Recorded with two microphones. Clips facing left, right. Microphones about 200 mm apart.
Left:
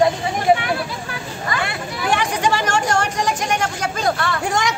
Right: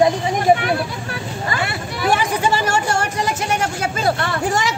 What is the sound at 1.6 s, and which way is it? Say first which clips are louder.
Speech: right 2 dB; 5° right (ahead or behind).